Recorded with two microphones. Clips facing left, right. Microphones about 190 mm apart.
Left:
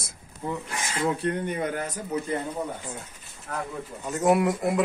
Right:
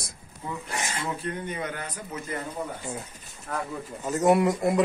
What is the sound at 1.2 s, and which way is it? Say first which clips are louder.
Speech: left 5 dB; 55° left (ahead or behind).